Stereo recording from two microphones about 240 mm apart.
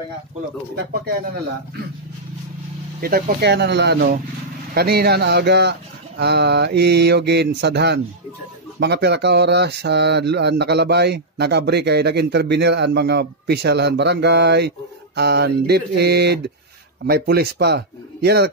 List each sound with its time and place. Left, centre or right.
3.0 s speech: right